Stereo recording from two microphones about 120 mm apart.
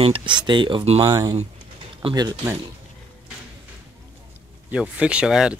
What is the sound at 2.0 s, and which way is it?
Speech, 45° right (ahead or behind).